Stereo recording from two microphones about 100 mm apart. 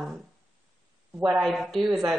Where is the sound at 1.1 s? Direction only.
15° right (ahead or behind).